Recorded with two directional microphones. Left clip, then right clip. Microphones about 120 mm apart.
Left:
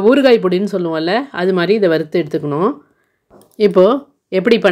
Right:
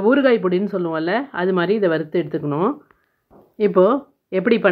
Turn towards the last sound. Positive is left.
turn(degrees=25)  # may be behind; listen again after turning